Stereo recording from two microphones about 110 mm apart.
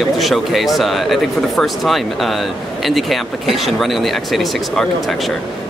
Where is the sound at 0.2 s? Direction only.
Centre (ahead or behind).